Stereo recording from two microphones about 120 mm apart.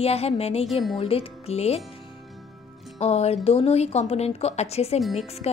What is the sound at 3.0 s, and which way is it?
Speech, 60° left (ahead or behind).